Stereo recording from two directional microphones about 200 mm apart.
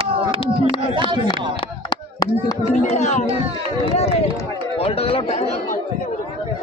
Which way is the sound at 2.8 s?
35° left (ahead or behind).